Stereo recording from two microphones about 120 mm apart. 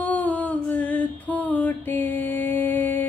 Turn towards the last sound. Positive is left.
turn(degrees=15)  # may be behind; listen again after turning